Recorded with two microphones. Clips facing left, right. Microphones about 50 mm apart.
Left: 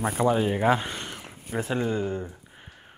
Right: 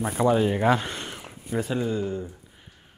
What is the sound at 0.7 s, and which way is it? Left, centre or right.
Speech, left.